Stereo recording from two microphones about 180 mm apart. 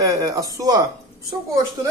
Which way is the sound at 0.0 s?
20° right (ahead or behind).